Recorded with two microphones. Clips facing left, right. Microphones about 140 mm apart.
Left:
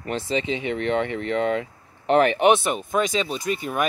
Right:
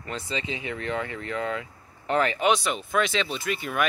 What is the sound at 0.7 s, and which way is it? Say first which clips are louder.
Speech: left 7 dB; 65° left (ahead or behind).